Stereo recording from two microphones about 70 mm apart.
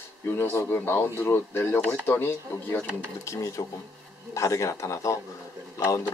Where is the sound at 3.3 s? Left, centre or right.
Left.